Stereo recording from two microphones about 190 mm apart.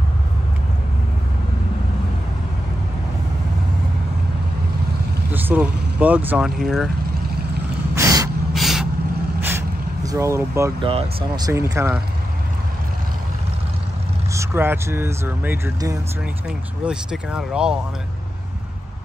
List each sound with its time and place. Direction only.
5.3 s speech: 10° right (ahead or behind)
7.9 s gasp: 15° right (ahead or behind)
8.5 s vehicle: centre (ahead or behind)
9.4 s vehicle: 10° right (ahead or behind)
10.8 s speech: 30° right (ahead or behind); by 12.0 s 15° right (ahead or behind)
14.3 s speech: 15° right (ahead or behind)
16.4 s speech: 5° right (ahead or behind)